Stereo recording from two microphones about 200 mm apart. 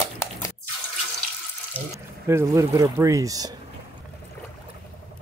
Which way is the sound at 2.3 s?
15° right (ahead or behind).